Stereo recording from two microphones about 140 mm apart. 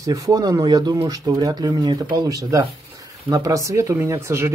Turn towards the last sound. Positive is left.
turn(degrees=-20)  # may be behind; listen again after turning